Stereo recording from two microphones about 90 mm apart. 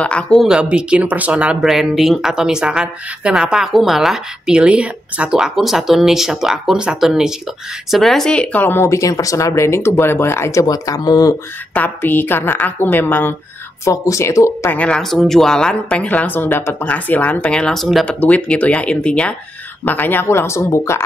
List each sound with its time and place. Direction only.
0.0 s speech: 10° left (ahead or behind)
0.4 s speech: 10° right (ahead or behind)
1.7 s speech: centre (ahead or behind); by 10.6 s 30° left (ahead or behind)
10.6 s speech: 45° left (ahead or behind)
11.7 s speech: 20° left (ahead or behind)
13.8 s speech: 35° left (ahead or behind)
14.7 s speech: 10° left (ahead or behind)
18.0 s speech: 10° left (ahead or behind); by 21.0 s 30° left (ahead or behind)